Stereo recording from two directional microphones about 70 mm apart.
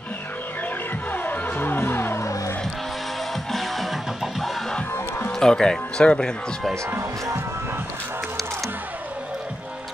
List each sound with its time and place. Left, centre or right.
1.1 s music: left
3.5 s music: centre
5.4 s speech: centre
7.0 s speech: right